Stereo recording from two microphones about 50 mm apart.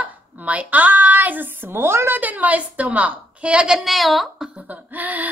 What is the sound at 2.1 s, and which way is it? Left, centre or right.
Speech, right.